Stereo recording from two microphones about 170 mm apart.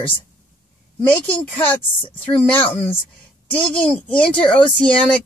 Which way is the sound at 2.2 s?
10° left (ahead or behind).